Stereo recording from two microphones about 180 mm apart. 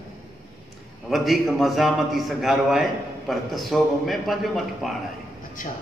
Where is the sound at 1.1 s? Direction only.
Centre (ahead or behind).